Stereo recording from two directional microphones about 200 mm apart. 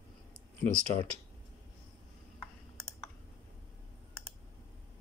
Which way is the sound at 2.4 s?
Centre (ahead or behind).